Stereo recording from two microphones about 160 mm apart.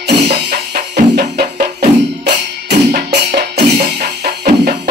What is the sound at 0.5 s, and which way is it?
Music, 80° right.